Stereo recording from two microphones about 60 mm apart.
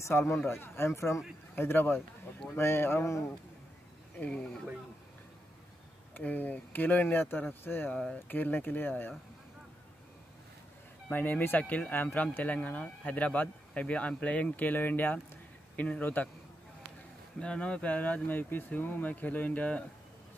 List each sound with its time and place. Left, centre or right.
0.1 s speech: left
0.5 s speech: left
1.5 s speech: left
4.2 s speech: centre
6.1 s speech: left
11.1 s speech: left
17.4 s speech: centre